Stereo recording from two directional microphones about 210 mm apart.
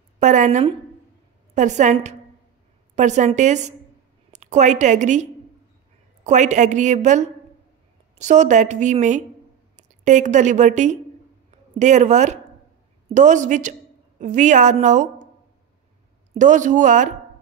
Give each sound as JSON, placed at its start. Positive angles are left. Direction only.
{"t": 0.2, "sound": "a woman's voice", "side_deg": -35}
{"t": 16.3, "sound": "a woman's voice", "side_deg": -35}